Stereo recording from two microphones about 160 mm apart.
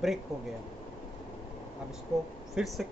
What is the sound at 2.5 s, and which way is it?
Speech, centre (ahead or behind).